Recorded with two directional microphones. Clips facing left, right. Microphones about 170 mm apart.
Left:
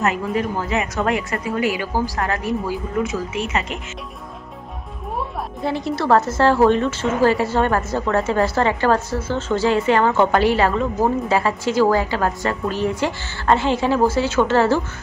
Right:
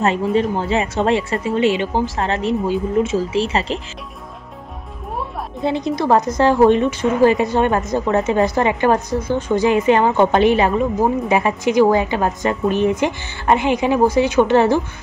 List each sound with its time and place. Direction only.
0.0 s a woman's voice: 30° right (ahead or behind)
5.6 s a woman's voice: 20° right (ahead or behind)